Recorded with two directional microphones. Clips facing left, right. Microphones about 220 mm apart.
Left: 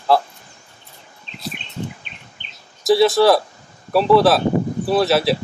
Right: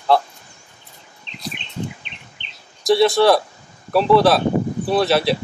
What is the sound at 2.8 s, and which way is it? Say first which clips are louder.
Speech: left 1 dB; centre (ahead or behind).